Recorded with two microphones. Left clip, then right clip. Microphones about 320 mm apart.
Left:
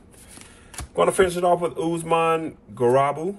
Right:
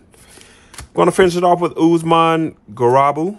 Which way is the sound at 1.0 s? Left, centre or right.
Right.